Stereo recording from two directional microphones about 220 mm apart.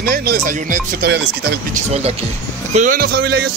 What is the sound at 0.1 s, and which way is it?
A man's voice, 45° right (ahead or behind).